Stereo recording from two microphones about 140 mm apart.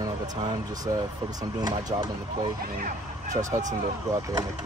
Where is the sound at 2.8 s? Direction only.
60° right (ahead or behind).